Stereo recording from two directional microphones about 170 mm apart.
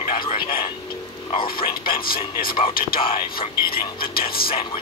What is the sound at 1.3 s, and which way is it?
Speech, 30° left (ahead or behind).